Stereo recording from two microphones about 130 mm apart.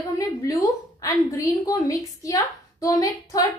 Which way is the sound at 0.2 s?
25° left (ahead or behind).